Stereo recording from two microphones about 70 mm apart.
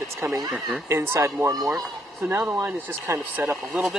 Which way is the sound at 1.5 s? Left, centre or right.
Right.